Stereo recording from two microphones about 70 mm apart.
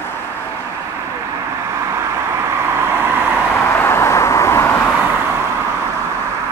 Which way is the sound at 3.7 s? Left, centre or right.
Left.